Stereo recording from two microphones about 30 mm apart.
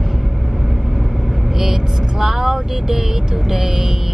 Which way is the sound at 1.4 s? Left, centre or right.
Centre.